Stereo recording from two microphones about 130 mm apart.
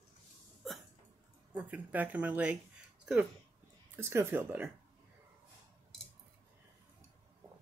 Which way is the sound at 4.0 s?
20° right (ahead or behind).